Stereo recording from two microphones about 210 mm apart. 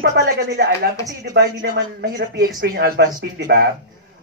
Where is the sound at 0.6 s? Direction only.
45° right (ahead or behind).